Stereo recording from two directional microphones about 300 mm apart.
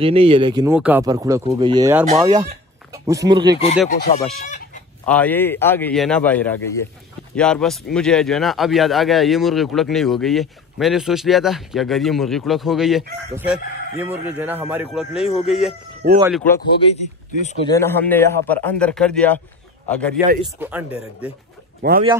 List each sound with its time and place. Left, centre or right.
0.0 s speech: centre
3.9 s speech: left
5.0 s speech: centre
17.3 s speech: left
17.6 s speech: centre
21.8 s speech: right